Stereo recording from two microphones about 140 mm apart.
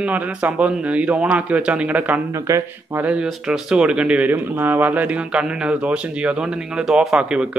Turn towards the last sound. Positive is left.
turn(degrees=-5)  # may be behind; listen again after turning